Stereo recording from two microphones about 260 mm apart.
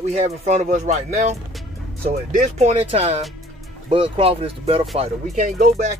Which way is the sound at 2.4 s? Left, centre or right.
Right.